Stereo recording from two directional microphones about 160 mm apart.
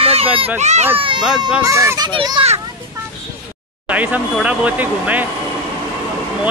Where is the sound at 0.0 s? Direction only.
40° right (ahead or behind).